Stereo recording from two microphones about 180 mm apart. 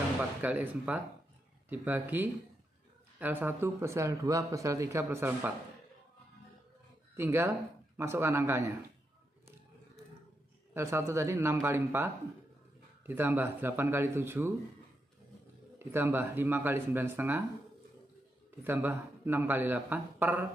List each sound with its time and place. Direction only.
0.4 s a man's voice: 10° right (ahead or behind)
7.2 s a man's voice: 15° right (ahead or behind)
10.7 s a man's voice: 15° right (ahead or behind)
15.8 s a man's voice: 15° right (ahead or behind)
18.6 s a man's voice: 10° right (ahead or behind)